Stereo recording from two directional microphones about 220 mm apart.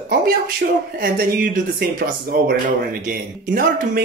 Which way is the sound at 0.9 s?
40° right (ahead or behind).